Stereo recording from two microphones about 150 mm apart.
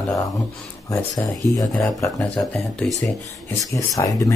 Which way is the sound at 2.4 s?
5° left (ahead or behind).